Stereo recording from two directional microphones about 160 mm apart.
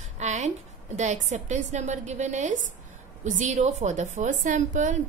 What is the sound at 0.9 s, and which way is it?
A woman's voice, 50° right (ahead or behind).